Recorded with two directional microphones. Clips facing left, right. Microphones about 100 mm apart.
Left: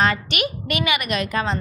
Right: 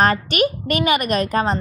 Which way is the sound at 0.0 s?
40° right (ahead or behind).